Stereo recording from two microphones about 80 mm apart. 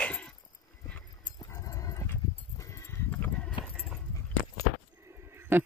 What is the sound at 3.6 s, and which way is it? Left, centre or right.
Clip-clop, left.